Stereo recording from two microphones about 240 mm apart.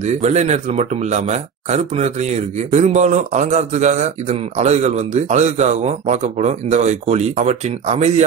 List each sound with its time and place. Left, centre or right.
0.0 s speech: right